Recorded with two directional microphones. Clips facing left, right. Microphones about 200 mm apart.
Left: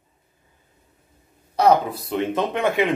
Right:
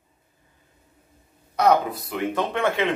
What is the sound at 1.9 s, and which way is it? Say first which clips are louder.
Speech: left 3 dB; 25° left (ahead or behind).